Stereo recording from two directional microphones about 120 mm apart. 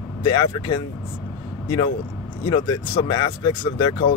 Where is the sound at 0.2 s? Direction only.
45° left (ahead or behind).